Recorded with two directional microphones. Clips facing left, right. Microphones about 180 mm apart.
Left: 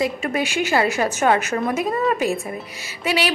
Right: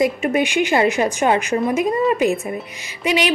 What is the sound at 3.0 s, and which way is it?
Speech, 40° left (ahead or behind).